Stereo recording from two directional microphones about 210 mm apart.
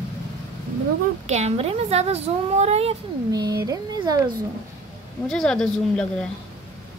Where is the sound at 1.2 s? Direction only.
30° right (ahead or behind).